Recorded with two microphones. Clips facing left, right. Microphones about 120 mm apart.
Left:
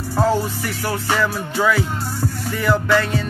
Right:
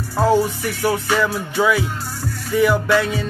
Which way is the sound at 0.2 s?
15° right (ahead or behind).